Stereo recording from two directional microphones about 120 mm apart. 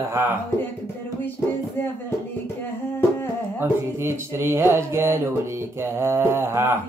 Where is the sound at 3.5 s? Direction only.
20° right (ahead or behind).